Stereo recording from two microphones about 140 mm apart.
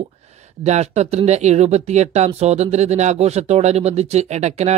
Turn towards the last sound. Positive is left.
turn(degrees=-50)  # may be behind; listen again after turning